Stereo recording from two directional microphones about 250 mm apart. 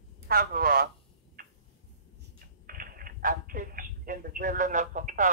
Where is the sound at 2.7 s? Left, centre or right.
Right.